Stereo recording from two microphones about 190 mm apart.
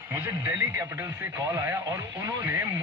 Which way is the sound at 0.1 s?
15° right (ahead or behind).